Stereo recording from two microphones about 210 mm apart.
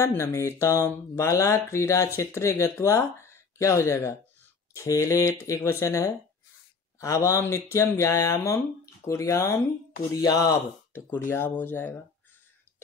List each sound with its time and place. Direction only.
0.0 s speech: 10° left (ahead or behind)